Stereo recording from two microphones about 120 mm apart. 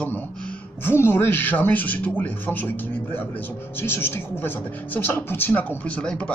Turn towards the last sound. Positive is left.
turn(degrees=10)  # may be behind; listen again after turning